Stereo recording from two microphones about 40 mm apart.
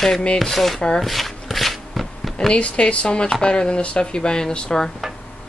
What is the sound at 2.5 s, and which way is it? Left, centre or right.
Speech, left.